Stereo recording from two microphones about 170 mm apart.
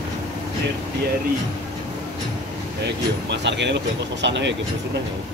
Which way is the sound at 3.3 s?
90° right.